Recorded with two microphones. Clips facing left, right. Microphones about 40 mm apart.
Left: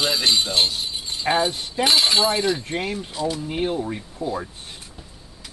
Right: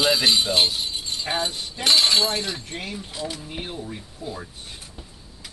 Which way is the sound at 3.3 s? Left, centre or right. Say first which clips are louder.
Left 9 dB; left.